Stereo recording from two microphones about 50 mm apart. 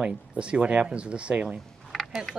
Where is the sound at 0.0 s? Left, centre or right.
Right.